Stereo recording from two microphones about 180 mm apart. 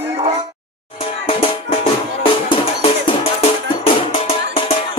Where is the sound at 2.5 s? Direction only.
30° left (ahead or behind).